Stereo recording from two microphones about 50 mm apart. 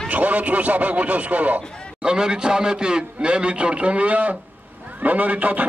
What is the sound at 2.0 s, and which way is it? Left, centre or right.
A man's voice, centre.